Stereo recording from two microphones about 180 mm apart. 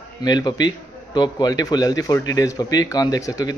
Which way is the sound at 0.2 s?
25° left (ahead or behind).